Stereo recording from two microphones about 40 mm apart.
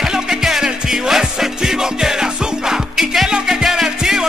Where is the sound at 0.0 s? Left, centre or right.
Centre.